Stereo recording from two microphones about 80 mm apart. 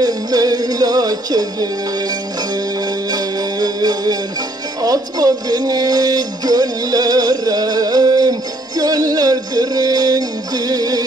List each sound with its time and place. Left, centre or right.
0.0 s music: right
3.1 s music: right
4.8 s a sound: right